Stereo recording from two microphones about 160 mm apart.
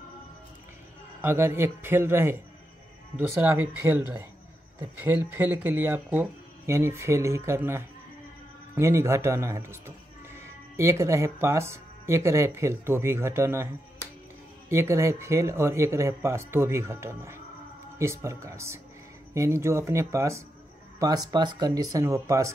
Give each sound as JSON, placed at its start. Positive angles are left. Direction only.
{"t": 1.2, "sound": "speech", "side_deg": -15}
{"t": 14.7, "sound": "speech", "side_deg": -15}